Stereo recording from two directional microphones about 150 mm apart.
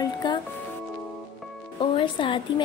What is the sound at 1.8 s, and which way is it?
Speech, 35° left (ahead or behind).